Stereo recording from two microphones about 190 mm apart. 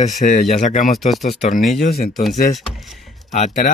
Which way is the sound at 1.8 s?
55° left (ahead or behind).